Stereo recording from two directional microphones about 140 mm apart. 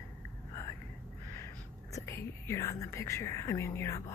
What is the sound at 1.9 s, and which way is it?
Speech, 20° left (ahead or behind).